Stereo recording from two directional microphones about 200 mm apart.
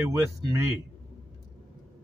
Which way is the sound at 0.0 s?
15° right (ahead or behind).